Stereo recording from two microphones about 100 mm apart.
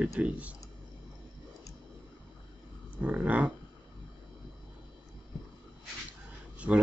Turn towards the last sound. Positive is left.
turn(degrees=-20)  # may be behind; listen again after turning